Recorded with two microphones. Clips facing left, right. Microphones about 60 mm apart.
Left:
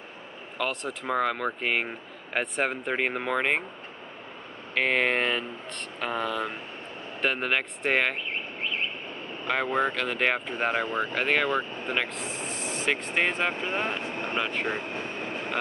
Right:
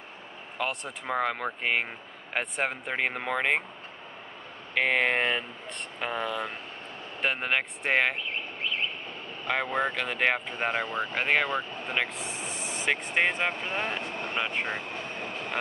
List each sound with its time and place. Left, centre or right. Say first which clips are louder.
0.6 s speech: left 2 dB; centre
4.7 s speech: even; centre
9.5 s speech: left 2 dB; centre
13.7 s speech: left 2 dB; centre
14.5 s speech: left 2 dB; centre